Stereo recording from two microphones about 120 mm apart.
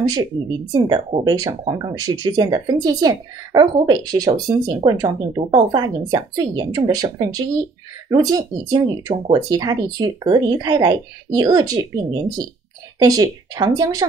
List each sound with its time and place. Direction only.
0.7 s speech: 40° right (ahead or behind)